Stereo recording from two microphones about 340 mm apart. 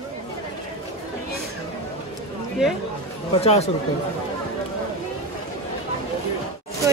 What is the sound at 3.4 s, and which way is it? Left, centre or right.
Speech, centre.